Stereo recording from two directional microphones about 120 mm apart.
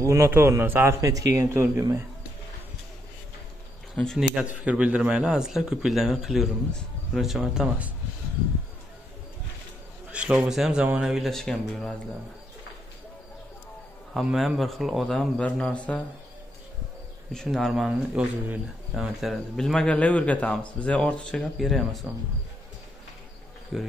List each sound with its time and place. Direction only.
0.0 s a man's voice: 25° right (ahead or behind)
3.9 s a man's voice: 5° left (ahead or behind)
10.1 s a man's voice: 10° right (ahead or behind)
14.1 s a man's voice: centre (ahead or behind)
17.3 s a man's voice: 5° left (ahead or behind)
23.7 s a man's voice: centre (ahead or behind)